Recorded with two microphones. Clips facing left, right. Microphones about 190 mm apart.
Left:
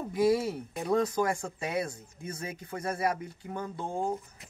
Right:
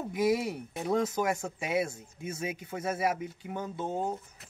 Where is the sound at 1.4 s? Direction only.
20° right (ahead or behind).